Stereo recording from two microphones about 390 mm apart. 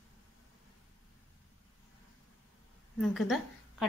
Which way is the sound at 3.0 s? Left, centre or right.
Centre.